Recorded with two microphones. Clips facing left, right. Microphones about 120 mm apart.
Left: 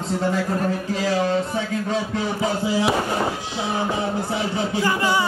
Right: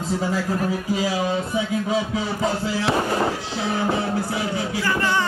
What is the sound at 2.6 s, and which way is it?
Speech, 15° left (ahead or behind).